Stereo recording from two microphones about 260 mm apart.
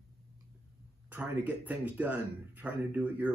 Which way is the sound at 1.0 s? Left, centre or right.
Centre.